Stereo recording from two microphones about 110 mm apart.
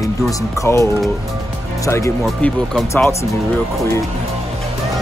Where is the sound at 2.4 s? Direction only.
10° left (ahead or behind).